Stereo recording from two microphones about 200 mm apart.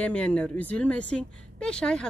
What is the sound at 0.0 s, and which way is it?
A woman's voice, 5° left (ahead or behind).